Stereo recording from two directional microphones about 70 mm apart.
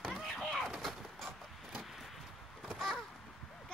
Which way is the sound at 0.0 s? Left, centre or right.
Centre.